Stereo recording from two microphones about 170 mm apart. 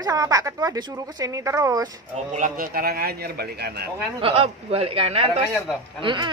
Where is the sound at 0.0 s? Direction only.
20° right (ahead or behind).